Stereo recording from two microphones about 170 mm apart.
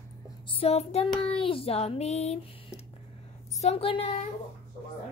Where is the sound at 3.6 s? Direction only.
35° left (ahead or behind).